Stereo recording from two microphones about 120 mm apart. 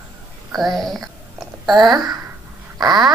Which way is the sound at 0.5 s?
Centre (ahead or behind).